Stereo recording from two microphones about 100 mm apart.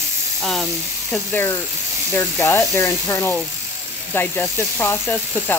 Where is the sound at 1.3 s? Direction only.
20° left (ahead or behind).